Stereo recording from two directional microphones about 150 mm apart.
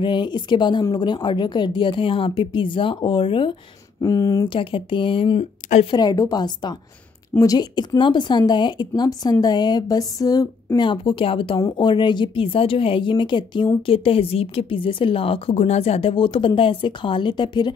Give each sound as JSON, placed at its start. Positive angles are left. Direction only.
{"t": 0.0, "sound": "a woman's voice", "side_deg": 30}
{"t": 4.0, "sound": "speech", "side_deg": 25}
{"t": 4.6, "sound": "a woman's voice", "side_deg": 35}
{"t": 5.9, "sound": "a woman's voice", "side_deg": 25}